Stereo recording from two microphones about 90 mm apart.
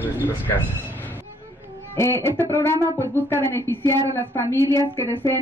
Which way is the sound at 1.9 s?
30° left (ahead or behind).